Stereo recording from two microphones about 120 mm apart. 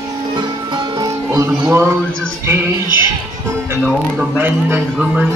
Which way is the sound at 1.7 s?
20° right (ahead or behind).